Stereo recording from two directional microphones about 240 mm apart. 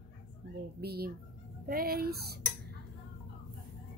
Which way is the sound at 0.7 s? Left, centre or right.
Right.